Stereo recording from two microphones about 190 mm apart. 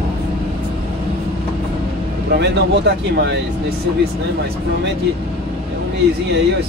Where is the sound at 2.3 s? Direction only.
65° right (ahead or behind).